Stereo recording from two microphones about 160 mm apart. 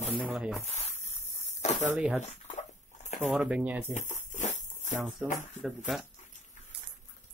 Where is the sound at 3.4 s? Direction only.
5° right (ahead or behind).